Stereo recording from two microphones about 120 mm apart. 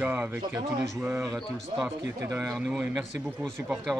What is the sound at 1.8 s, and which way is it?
Speech, 25° right (ahead or behind).